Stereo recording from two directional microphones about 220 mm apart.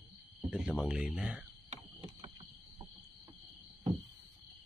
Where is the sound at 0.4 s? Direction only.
5° right (ahead or behind).